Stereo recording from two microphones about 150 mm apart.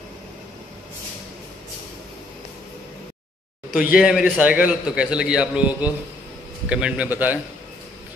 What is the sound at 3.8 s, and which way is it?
A man's voice, 5° right (ahead or behind).